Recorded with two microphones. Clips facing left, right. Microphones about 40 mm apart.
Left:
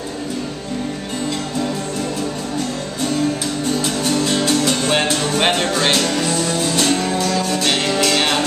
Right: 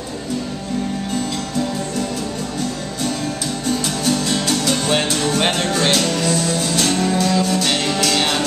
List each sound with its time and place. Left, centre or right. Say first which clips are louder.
3.6 s music: even; centre